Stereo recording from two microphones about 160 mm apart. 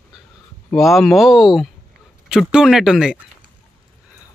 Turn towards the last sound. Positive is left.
turn(degrees=-5)  # may be behind; listen again after turning